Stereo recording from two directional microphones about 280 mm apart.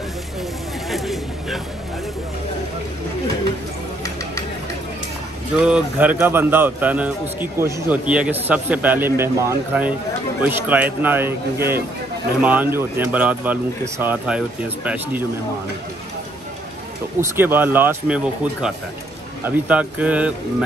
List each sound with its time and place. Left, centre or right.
0.8 s a sound: centre
5.6 s a man's voice: centre
17.2 s a man's voice: centre